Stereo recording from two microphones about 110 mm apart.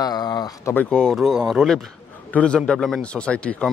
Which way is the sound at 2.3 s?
10° left (ahead or behind).